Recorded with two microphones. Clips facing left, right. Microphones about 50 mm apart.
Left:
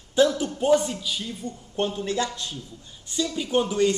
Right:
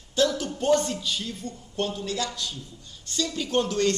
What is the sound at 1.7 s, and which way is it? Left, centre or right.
Speech, left.